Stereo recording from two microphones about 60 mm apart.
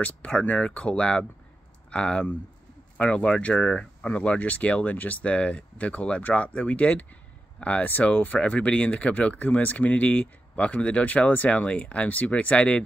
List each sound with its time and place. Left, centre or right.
0.0 s speech: left